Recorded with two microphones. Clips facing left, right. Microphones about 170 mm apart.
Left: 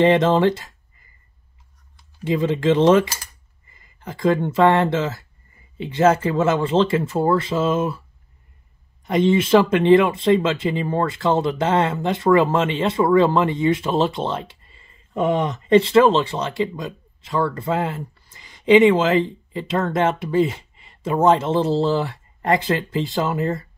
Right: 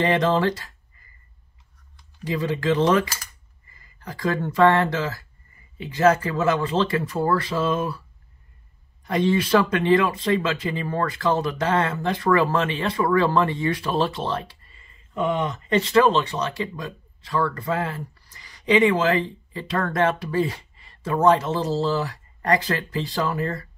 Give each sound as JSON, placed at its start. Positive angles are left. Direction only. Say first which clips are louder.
{"t": 0.0, "sound": "speech", "louder": "left 5 dB", "side_deg": 25}
{"t": 2.2, "sound": "speech", "louder": "left 5 dB", "side_deg": 25}
{"t": 9.0, "sound": "speech", "louder": "left 4 dB", "side_deg": 25}
{"t": 15.1, "sound": "speech", "louder": "left 4 dB", "side_deg": 35}